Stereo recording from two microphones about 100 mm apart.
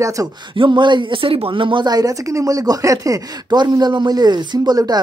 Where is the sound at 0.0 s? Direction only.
35° right (ahead or behind).